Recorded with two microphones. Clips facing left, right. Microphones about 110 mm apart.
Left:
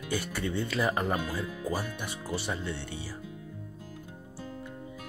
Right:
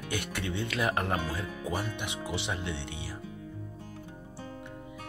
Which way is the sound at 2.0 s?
70° right (ahead or behind).